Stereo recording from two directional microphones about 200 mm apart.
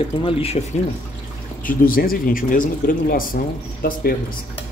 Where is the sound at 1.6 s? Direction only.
45° left (ahead or behind).